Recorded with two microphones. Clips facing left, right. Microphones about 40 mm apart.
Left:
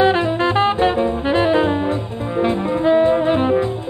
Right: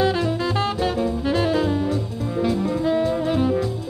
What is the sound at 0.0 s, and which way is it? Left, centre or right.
Music, left.